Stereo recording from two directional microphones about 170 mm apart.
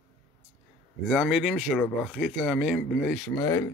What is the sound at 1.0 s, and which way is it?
Speech, 5° left (ahead or behind).